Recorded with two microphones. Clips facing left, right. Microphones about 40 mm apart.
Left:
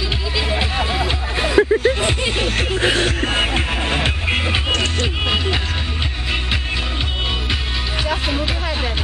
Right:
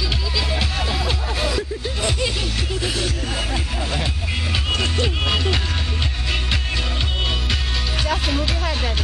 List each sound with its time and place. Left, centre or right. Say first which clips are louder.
0.5 s music: left 4 dB; left
1.6 s vehicle: left 13 dB; left
2.0 s music: left 3 dB; left
5.0 s music: left 1 dB; centre
8.1 s music: left 1 dB; centre